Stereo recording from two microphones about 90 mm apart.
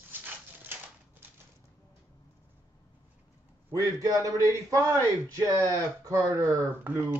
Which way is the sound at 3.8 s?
40° right (ahead or behind).